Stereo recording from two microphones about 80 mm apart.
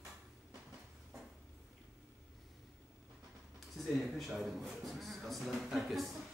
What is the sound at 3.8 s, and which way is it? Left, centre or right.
Speech, centre.